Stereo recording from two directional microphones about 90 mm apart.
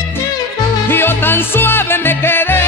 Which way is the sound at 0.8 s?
25° left (ahead or behind).